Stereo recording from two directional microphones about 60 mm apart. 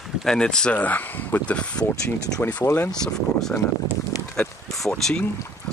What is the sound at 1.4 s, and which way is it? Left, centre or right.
Speech, centre.